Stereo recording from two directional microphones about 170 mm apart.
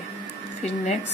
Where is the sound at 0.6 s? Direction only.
45° left (ahead or behind).